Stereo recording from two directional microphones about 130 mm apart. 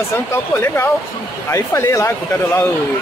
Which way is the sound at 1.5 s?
20° left (ahead or behind).